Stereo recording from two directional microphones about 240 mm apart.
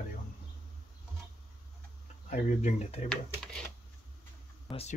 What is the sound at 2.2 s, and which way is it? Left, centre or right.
Speech, left.